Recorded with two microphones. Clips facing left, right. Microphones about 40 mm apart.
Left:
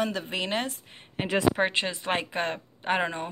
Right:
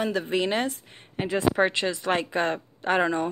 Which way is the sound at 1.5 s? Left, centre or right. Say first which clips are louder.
Right 3 dB; left.